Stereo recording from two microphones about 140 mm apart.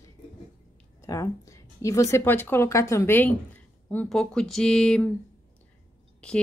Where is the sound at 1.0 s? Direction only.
25° left (ahead or behind).